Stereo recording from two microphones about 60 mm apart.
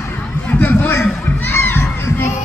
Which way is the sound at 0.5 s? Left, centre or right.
Left.